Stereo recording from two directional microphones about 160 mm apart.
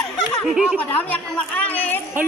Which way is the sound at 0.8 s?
10° left (ahead or behind).